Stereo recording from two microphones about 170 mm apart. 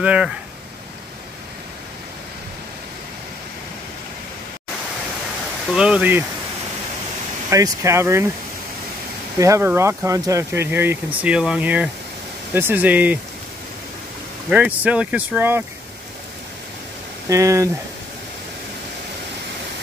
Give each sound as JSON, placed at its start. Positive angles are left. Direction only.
{"t": 0.0, "sound": "speech", "side_deg": -5}
{"t": 5.8, "sound": "speech", "side_deg": -5}
{"t": 7.4, "sound": "speech", "side_deg": -20}
{"t": 9.4, "sound": "speech", "side_deg": -15}
{"t": 14.5, "sound": "speech", "side_deg": -10}
{"t": 17.3, "sound": "speech", "side_deg": -20}